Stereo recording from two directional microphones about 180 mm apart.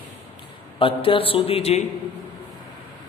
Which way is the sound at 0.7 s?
30° left (ahead or behind).